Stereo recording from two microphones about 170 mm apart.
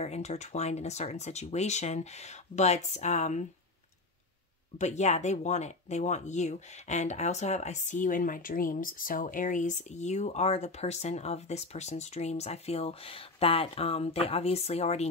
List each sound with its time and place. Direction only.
0.0 s speech: 40° left (ahead or behind)
4.7 s speech: 45° left (ahead or behind)